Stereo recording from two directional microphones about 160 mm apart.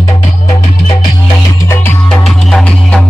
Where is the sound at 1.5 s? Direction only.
15° left (ahead or behind).